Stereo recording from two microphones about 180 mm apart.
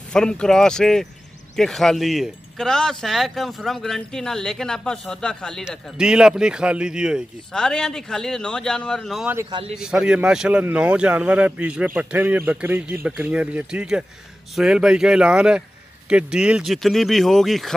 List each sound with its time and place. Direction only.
0.1 s speech: 5° left (ahead or behind)
9.5 s a man's voice: 30° right (ahead or behind)
9.8 s speech: 5° right (ahead or behind)